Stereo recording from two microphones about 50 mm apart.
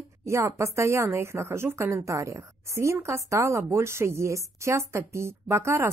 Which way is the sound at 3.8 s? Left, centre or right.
Right.